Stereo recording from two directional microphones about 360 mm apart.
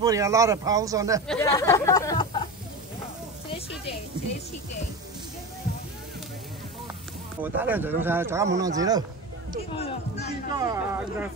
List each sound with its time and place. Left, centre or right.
0.0 s speech: centre
1.2 s speech: centre
7.4 s speech: centre
9.7 s music: centre
10.5 s speech: centre